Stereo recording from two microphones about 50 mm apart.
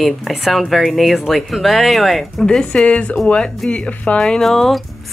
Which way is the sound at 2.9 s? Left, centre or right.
Left.